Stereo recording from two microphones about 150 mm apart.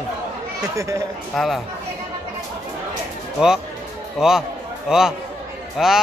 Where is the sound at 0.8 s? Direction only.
20° right (ahead or behind).